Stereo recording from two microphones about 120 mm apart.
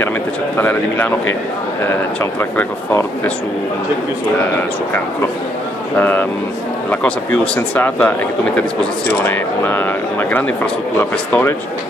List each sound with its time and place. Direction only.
0.6 s speech: 15° left (ahead or behind)
2.5 s speech: 20° left (ahead or behind)
5.9 s speech: 15° left (ahead or behind)
9.2 s speech: 15° left (ahead or behind)